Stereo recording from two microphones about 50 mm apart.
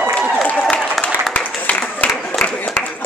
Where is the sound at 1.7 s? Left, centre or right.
Left.